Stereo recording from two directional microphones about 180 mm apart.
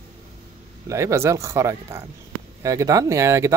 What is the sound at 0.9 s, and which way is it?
A man's voice, 15° right (ahead or behind).